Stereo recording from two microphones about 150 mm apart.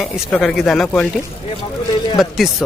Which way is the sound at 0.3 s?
5° left (ahead or behind).